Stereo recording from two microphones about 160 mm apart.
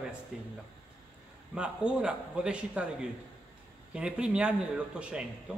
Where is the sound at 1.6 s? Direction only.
5° right (ahead or behind).